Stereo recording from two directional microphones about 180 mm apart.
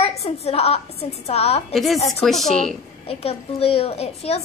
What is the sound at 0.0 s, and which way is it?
A woman's voice, 35° left (ahead or behind).